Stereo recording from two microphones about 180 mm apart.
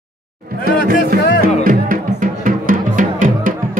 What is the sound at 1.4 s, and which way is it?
Music, 50° right (ahead or behind).